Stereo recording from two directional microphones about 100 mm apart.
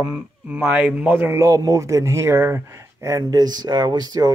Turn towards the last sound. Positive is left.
turn(degrees=-40)  # may be behind; listen again after turning